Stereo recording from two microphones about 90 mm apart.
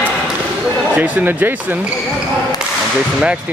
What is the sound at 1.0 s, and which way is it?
Speech, 20° right (ahead or behind).